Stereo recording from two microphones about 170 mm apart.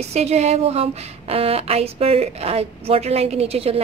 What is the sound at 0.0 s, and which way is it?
A woman's voice, 40° right (ahead or behind).